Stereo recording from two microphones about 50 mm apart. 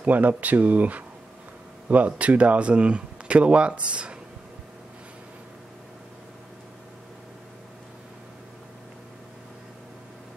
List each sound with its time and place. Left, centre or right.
0.0 s speech: right